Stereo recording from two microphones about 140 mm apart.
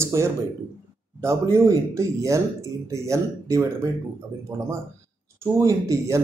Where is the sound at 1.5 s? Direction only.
20° right (ahead or behind).